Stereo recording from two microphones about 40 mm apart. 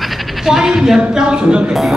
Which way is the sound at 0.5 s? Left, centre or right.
Centre.